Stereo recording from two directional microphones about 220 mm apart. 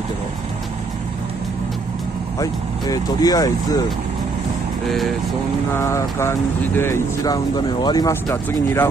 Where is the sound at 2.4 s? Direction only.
15° left (ahead or behind).